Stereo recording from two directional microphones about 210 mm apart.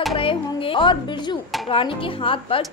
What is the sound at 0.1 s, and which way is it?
Music, 25° left (ahead or behind).